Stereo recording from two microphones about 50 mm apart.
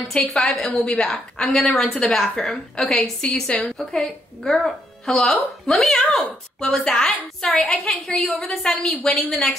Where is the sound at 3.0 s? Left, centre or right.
Centre.